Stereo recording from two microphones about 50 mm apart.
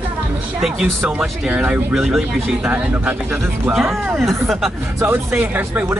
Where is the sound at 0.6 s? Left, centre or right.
Centre.